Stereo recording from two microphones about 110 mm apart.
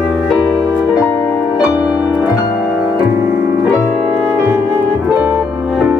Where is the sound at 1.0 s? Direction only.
20° left (ahead or behind).